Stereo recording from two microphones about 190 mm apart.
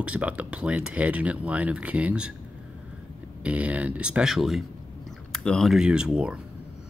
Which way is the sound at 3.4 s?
5° right (ahead or behind).